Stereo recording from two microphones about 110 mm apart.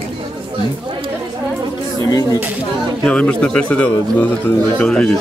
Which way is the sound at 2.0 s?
30° left (ahead or behind).